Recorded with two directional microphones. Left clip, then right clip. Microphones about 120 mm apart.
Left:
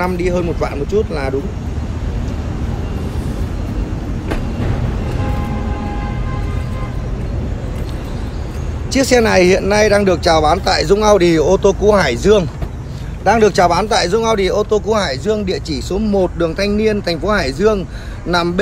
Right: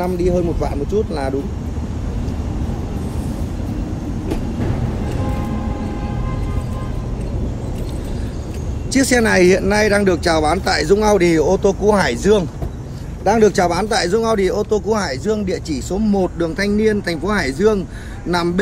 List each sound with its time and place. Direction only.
0.0 s speech: 55° left (ahead or behind)
8.9 s speech: 10° left (ahead or behind)